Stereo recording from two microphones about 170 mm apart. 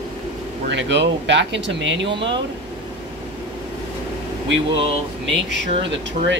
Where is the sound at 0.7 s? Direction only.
90° right.